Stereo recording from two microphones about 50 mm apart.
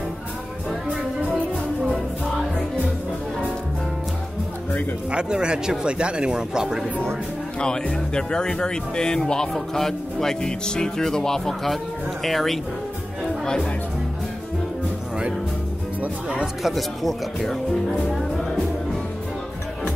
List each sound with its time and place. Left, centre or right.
5.1 s speech: centre
7.6 s speech: centre
16.6 s speech: centre
18.3 s music: centre